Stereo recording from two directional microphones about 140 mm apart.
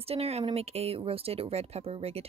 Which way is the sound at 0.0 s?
45° right (ahead or behind).